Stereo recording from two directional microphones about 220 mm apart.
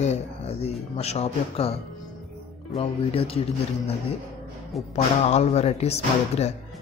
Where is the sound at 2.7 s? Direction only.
25° left (ahead or behind).